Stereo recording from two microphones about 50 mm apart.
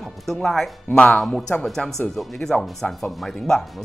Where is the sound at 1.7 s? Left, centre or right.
Centre.